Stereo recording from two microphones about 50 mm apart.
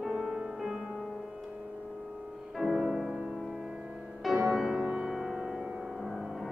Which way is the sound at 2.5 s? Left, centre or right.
Centre.